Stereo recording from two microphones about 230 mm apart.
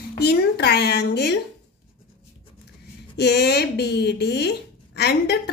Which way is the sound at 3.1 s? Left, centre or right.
Left.